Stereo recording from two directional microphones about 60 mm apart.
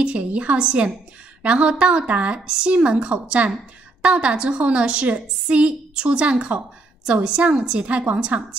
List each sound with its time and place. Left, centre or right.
0.0 s a woman's voice: right